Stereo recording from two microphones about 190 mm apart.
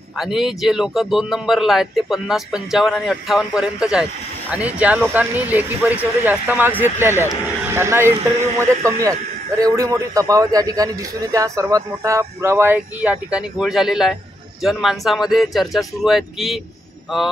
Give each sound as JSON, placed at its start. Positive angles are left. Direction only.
{"t": 0.2, "sound": "a man's voice", "side_deg": 0}